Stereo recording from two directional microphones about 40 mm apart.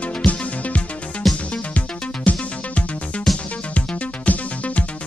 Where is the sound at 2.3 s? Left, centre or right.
Left.